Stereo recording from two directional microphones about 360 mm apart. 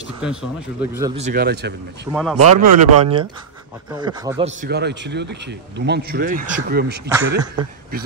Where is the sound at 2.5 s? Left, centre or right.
Right.